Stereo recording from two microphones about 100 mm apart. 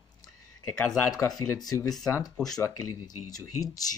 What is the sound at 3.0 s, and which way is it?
Speech, 40° left (ahead or behind).